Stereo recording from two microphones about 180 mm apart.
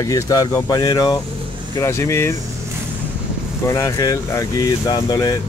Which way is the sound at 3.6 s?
15° left (ahead or behind).